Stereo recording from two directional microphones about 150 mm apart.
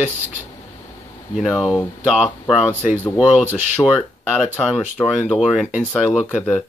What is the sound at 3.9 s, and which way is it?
Speech, centre (ahead or behind).